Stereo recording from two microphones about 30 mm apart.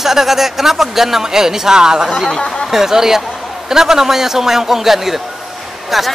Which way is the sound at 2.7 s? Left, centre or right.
Centre.